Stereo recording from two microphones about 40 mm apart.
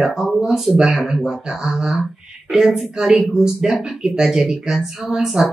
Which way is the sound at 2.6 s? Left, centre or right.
Centre.